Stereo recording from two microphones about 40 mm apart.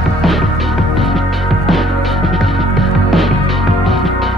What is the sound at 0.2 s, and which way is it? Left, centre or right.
Music, centre.